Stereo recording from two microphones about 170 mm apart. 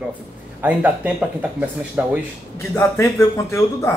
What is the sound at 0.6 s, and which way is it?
Speech, 10° right (ahead or behind).